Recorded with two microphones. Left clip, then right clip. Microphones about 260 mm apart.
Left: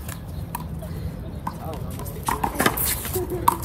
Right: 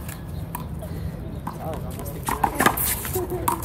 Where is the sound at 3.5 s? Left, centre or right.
Centre.